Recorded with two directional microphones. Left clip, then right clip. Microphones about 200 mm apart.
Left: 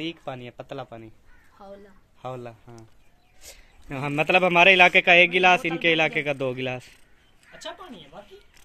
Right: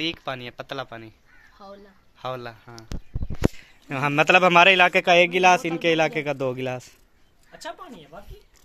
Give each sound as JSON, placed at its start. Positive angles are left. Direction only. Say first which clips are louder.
{"t": 0.0, "sound": "a man's voice", "louder": "right 5 dB", "side_deg": -5}
{"t": 7.5, "sound": "speech", "louder": "right 1 dB", "side_deg": -45}